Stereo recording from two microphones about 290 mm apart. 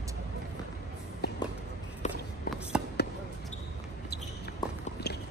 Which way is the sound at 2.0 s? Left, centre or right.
Left.